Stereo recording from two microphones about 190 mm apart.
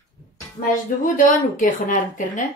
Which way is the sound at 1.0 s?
45° left (ahead or behind).